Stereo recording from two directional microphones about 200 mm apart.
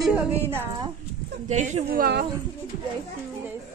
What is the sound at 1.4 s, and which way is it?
Speech, 35° right (ahead or behind).